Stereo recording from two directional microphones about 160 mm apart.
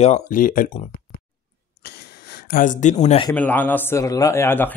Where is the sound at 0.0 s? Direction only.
50° left (ahead or behind).